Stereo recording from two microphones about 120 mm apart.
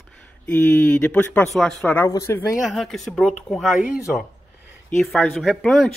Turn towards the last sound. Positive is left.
turn(degrees=0)  # may be behind; listen again after turning